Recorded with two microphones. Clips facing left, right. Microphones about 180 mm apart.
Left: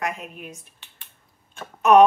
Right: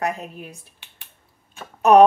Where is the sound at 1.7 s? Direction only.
35° right (ahead or behind).